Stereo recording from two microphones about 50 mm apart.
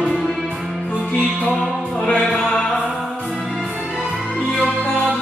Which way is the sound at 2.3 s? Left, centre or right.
Centre.